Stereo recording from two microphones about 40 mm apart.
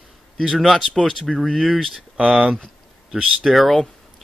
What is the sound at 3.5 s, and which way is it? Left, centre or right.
Speech, centre.